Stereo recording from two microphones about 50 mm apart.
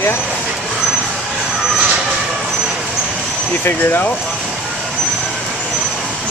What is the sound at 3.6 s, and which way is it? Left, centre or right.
Speech, left.